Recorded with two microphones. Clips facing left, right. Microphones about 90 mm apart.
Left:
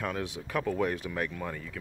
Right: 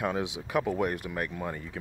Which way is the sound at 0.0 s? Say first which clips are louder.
Right 3 dB; 15° right (ahead or behind).